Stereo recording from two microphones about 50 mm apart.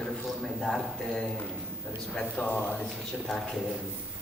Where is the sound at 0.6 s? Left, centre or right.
Centre.